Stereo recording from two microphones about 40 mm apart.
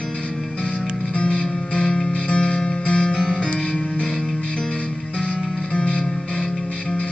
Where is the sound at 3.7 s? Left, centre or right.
Centre.